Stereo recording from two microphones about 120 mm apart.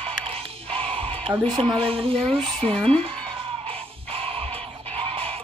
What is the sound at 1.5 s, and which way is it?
Speech, 40° right (ahead or behind).